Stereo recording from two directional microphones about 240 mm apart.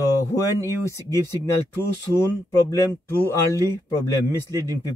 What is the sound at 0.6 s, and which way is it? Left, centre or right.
Speech, centre.